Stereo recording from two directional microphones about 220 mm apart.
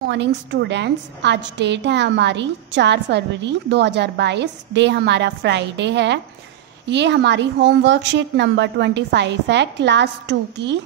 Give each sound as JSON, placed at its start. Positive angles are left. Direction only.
{"t": 0.0, "sound": "a woman's voice", "side_deg": -50}